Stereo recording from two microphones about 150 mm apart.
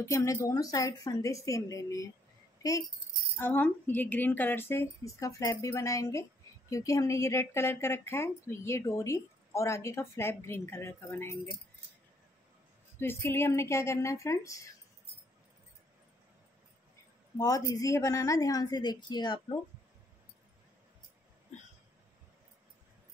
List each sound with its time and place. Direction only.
0.0 s a woman's voice: 20° left (ahead or behind)
3.3 s a woman's voice: 15° left (ahead or behind)
13.0 s a woman's voice: 15° left (ahead or behind)
17.4 s a woman's voice: 25° left (ahead or behind)